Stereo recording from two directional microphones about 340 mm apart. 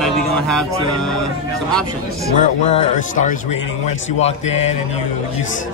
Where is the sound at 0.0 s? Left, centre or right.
Centre.